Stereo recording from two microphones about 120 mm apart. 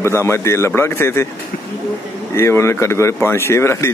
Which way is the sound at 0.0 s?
20° left (ahead or behind).